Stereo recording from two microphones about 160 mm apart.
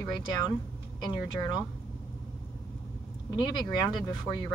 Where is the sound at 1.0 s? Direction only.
25° left (ahead or behind).